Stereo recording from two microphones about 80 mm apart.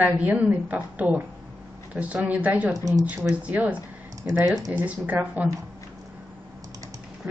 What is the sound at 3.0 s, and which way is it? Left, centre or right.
Speech, centre.